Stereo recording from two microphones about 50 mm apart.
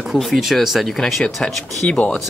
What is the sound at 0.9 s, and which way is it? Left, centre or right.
Speech, centre.